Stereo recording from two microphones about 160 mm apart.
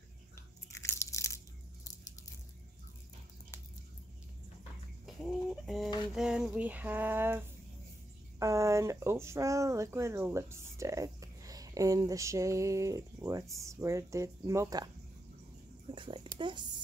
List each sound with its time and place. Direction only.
0.7 s biting: 20° left (ahead or behind)
5.0 s chicken: centre (ahead or behind)
6.1 s a sound: 5° right (ahead or behind)
8.4 s speech: 20° right (ahead or behind)
15.9 s speech: 30° right (ahead or behind)